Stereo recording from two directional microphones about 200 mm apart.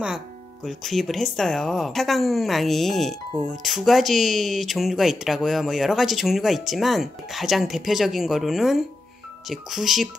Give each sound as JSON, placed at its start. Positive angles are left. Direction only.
{"t": 0.7, "sound": "speech", "side_deg": 0}